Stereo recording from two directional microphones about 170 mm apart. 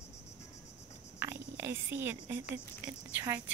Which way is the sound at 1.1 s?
15° right (ahead or behind).